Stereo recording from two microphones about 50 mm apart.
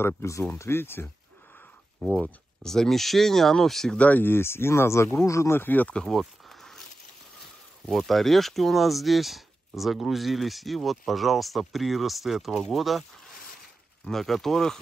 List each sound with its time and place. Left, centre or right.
0.2 s speech: left
0.6 s speech: left
2.6 s speech: centre
3.9 s speech: left
4.2 s speech: left
5.5 s speech: left
6.0 s a sound: centre
7.8 s speech: centre
14.0 s speech: centre